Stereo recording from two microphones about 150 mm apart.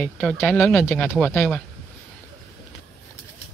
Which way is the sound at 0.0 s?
10° left (ahead or behind).